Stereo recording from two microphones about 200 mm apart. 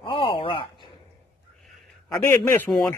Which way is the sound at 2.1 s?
15° left (ahead or behind).